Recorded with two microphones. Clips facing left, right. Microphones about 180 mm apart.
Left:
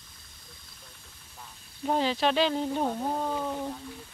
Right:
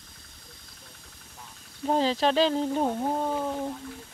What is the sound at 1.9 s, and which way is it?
Speech, 35° right (ahead or behind).